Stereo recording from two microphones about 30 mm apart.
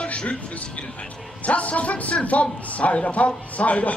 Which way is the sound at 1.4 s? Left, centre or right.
Left.